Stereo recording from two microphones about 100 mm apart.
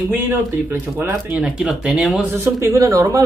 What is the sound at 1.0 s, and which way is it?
Speech, 20° right (ahead or behind).